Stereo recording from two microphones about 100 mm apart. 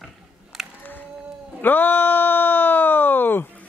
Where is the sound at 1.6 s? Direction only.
20° left (ahead or behind).